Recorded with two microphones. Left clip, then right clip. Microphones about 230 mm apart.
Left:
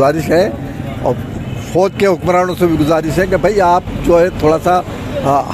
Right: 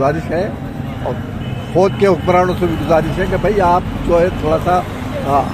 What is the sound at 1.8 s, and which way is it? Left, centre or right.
Speech, left.